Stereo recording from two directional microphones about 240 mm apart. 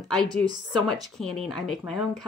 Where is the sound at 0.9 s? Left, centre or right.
Centre.